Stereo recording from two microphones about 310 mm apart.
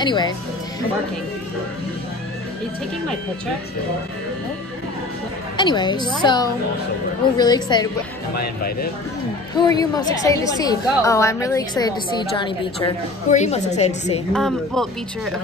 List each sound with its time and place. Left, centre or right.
0.0 s a woman's voice: centre
5.6 s a woman's voice: centre
8.4 s speech: left
9.6 s a woman's voice: centre
14.3 s speech: centre